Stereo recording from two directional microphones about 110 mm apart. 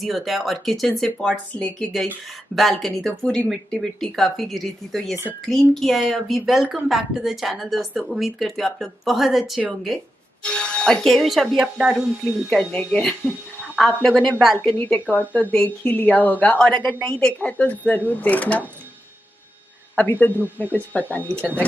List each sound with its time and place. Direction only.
0.0 s speech: centre (ahead or behind)
1.6 s a woman's voice: 15° left (ahead or behind)
2.5 s speech: centre (ahead or behind)
3.1 s a woman's voice: 10° left (ahead or behind); by 12.0 s 5° right (ahead or behind)
12.4 s a woman's voice: 5° left (ahead or behind)
20.0 s a woman's voice: 15° left (ahead or behind)